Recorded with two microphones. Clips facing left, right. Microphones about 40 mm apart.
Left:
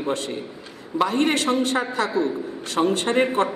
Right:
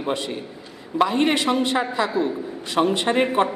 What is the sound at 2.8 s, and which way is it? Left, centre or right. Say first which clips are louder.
Speech: right 1 dB; centre.